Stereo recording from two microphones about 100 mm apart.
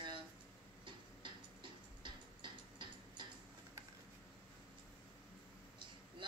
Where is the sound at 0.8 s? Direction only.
50° right (ahead or behind).